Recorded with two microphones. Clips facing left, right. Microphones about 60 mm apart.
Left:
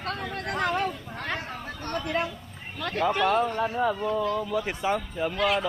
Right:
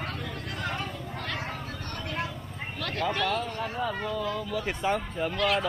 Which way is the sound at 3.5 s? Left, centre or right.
Left.